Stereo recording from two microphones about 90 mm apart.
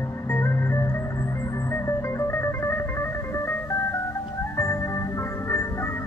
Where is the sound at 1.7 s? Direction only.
30° left (ahead or behind).